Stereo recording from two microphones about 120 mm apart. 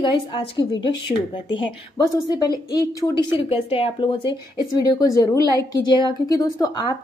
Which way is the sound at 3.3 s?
50° left (ahead or behind).